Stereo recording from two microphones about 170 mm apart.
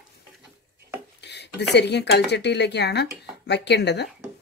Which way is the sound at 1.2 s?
85° left.